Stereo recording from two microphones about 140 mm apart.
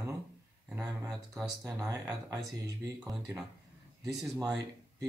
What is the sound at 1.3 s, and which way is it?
Speech, 25° right (ahead or behind).